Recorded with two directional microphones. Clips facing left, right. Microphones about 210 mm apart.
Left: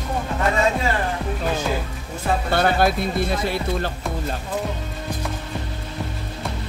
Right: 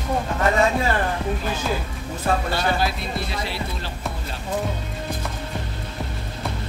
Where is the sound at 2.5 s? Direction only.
55° left (ahead or behind).